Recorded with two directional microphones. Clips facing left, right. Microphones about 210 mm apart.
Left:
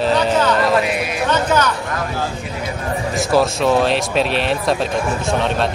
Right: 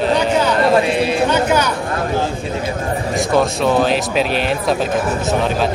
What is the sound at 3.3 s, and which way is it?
Speech, centre (ahead or behind).